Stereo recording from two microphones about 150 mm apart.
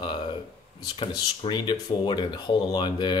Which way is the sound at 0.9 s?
35° left (ahead or behind).